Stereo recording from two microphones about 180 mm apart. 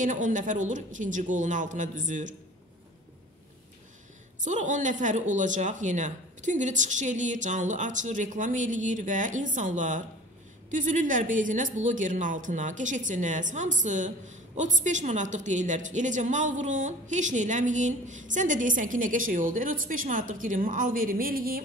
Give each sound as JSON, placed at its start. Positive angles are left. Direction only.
{"t": 0.0, "sound": "speech", "side_deg": -45}
{"t": 4.4, "sound": "speech", "side_deg": -45}